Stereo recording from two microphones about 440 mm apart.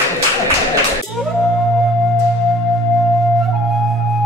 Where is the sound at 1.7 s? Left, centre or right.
Centre.